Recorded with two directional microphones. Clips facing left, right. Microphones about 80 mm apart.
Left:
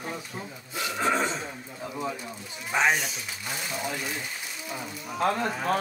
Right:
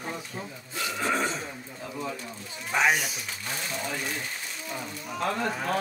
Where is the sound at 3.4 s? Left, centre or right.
Centre.